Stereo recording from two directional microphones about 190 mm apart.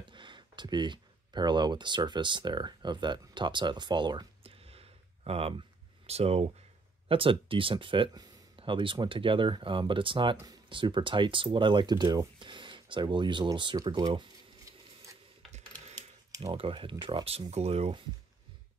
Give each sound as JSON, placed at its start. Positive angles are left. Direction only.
{"t": 0.0, "sound": "speech", "side_deg": -25}
{"t": 16.5, "sound": "speech", "side_deg": -30}